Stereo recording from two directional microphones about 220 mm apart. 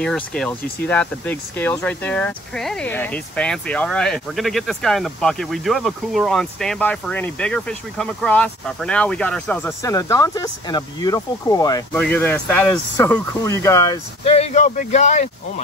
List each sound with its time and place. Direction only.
0.0 s speech: 5° left (ahead or behind)
14.2 s speech: 30° left (ahead or behind)